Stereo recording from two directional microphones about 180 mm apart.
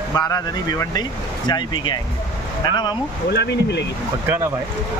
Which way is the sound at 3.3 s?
70° left (ahead or behind).